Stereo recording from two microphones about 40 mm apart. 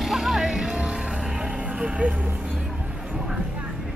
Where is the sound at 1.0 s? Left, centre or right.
Centre.